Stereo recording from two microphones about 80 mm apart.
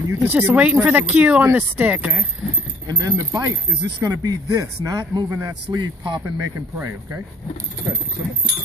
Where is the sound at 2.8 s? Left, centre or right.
Right.